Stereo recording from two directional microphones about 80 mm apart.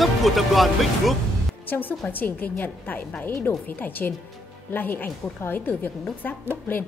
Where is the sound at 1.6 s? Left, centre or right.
Left.